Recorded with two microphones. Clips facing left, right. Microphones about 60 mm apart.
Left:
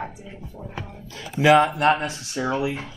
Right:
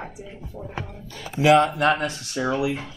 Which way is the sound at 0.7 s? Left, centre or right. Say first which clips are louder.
Right 1 dB; right.